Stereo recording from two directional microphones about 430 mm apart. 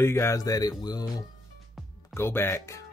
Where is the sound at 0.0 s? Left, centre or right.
Centre.